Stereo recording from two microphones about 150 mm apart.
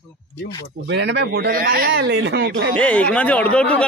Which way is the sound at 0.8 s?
90° right.